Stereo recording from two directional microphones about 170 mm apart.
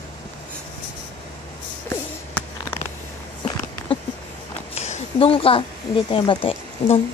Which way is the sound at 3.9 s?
30° left (ahead or behind).